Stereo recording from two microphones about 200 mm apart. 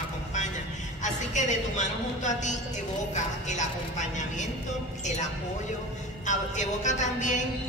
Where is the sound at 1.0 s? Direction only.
35° left (ahead or behind).